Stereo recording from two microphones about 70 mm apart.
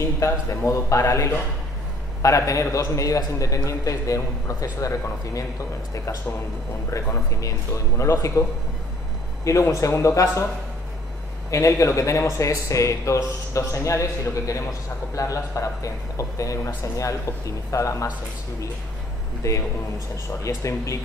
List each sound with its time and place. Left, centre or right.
0.0 s a man's voice: left
6.9 s a man's voice: left
11.5 s a man's voice: left
15.1 s a man's voice: left
19.4 s a man's voice: left